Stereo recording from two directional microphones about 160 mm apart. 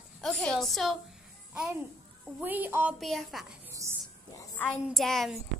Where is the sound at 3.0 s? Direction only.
Centre (ahead or behind).